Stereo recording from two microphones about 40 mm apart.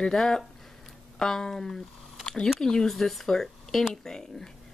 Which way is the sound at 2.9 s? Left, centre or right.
Centre.